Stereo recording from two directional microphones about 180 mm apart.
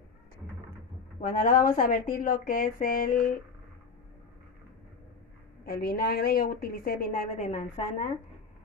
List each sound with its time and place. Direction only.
1.2 s speech: 50° left (ahead or behind)
5.7 s a woman's voice: 60° left (ahead or behind)